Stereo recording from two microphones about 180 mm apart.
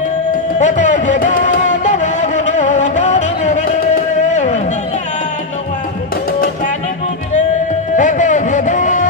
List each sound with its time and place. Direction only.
0.6 s music: 40° left (ahead or behind)
4.3 s a sound: 40° left (ahead or behind)
7.9 s music: 45° left (ahead or behind)